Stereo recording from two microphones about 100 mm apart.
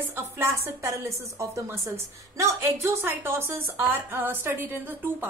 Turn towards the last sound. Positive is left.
turn(degrees=-20)  # may be behind; listen again after turning